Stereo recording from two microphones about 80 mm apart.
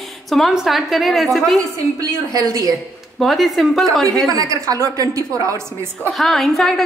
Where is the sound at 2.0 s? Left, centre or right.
Right.